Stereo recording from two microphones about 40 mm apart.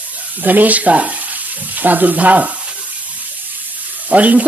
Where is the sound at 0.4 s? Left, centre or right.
Right.